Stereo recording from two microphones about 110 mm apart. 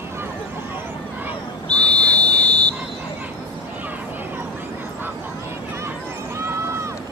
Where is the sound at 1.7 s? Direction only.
10° left (ahead or behind).